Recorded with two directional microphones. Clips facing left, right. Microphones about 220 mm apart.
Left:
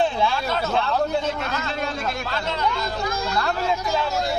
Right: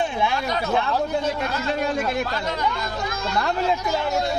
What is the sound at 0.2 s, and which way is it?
Speech, 15° right (ahead or behind).